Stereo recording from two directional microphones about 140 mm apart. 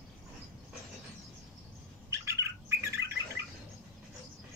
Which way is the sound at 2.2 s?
20° right (ahead or behind).